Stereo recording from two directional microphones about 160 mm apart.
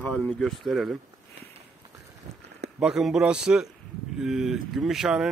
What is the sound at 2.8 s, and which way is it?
A man's voice, 5° right (ahead or behind).